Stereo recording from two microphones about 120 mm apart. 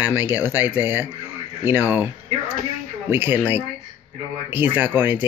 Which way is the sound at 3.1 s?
20° right (ahead or behind).